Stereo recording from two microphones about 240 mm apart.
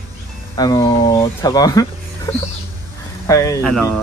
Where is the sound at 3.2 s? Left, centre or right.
Centre.